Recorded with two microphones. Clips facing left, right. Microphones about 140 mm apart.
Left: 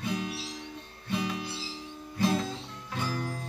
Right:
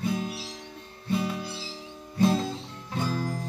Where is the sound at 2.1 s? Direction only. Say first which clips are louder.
Right 4 dB; 30° right (ahead or behind).